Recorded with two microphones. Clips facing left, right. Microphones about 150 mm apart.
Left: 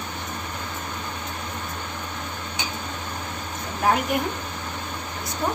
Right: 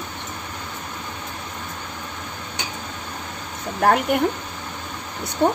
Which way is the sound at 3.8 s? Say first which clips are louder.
Right 4 dB; 60° right (ahead or behind).